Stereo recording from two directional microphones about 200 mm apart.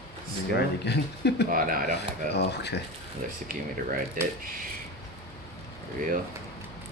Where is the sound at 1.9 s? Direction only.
55° left (ahead or behind).